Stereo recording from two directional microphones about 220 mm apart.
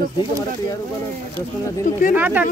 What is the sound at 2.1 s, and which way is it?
Speech, 10° right (ahead or behind).